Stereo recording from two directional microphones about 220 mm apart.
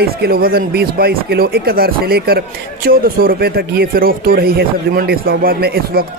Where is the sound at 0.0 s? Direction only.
45° right (ahead or behind).